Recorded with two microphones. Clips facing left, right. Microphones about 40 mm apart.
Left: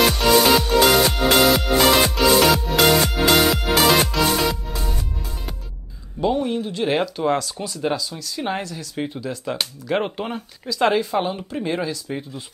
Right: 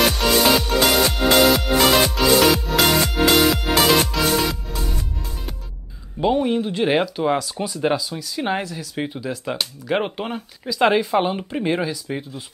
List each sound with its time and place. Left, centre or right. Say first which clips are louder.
0.0 s music: left 1 dB; centre
6.2 s a sound: right 2 dB; centre
6.9 s speech: even; centre